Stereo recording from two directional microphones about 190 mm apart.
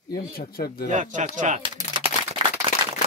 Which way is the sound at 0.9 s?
40° right (ahead or behind).